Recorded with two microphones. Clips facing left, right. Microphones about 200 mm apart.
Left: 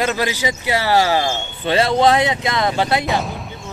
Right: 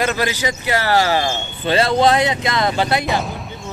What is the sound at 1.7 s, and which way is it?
Speech, 15° left (ahead or behind).